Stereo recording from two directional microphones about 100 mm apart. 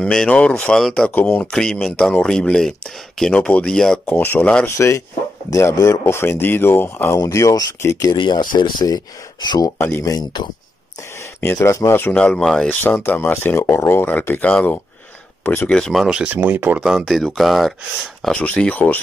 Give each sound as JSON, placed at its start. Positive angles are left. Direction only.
{"t": 0.0, "sound": "speech", "side_deg": 5}
{"t": 4.2, "sound": "speech", "side_deg": 20}
{"t": 4.6, "sound": "speech", "side_deg": 25}
{"t": 7.2, "sound": "speech", "side_deg": 35}
{"t": 8.2, "sound": "speech", "side_deg": 50}
{"t": 9.8, "sound": "speech", "side_deg": 25}
{"t": 11.4, "sound": "speech", "side_deg": 25}
{"t": 12.1, "sound": "speech", "side_deg": 10}
{"t": 12.6, "sound": "speech", "side_deg": 20}
{"t": 15.8, "sound": "speech", "side_deg": 0}
{"t": 16.3, "sound": "speech", "side_deg": -20}
{"t": 17.0, "sound": "speech", "side_deg": 5}
{"t": 18.3, "sound": "speech", "side_deg": 15}